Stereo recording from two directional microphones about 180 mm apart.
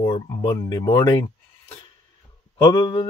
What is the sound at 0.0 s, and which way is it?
Speech, 20° left (ahead or behind).